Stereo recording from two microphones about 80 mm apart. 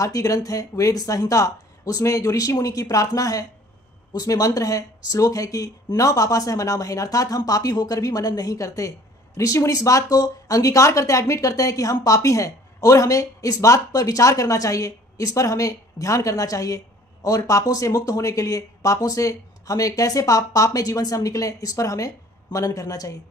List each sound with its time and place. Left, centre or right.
0.0 s speech: left